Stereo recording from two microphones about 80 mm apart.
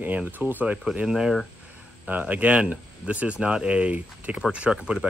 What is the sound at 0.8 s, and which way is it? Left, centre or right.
Speech, centre.